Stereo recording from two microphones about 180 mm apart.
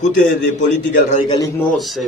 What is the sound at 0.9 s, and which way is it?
Speech, 45° left (ahead or behind).